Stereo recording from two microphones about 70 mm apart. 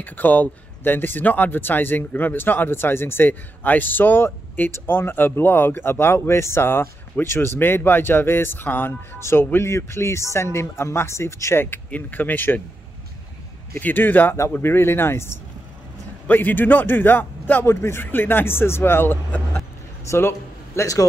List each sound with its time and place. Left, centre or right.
0.0 s speech: left
11.6 s a man's voice: left
13.7 s a man's voice: left
20.1 s a sound: left